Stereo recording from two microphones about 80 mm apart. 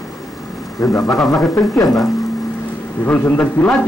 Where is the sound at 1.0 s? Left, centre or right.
Centre.